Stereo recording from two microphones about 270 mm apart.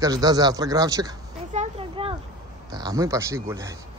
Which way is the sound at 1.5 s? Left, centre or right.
Right.